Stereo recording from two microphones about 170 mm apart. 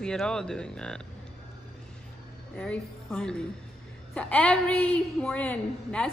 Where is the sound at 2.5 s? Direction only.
5° left (ahead or behind).